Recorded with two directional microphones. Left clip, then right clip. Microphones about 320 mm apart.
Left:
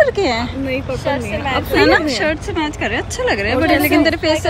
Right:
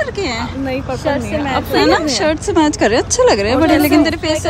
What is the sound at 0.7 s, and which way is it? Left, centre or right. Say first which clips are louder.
Speech: right 2 dB; right.